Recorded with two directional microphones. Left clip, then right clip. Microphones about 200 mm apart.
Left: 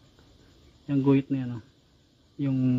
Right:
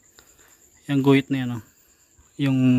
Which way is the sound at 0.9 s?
20° right (ahead or behind).